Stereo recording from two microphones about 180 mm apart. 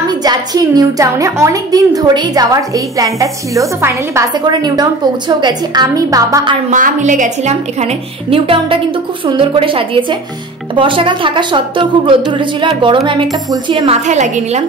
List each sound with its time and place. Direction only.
0.2 s a woman's voice: 20° right (ahead or behind)
6.7 s a woman's voice: 45° right (ahead or behind); by 13.8 s 25° right (ahead or behind)
13.8 s a woman's voice: 40° right (ahead or behind)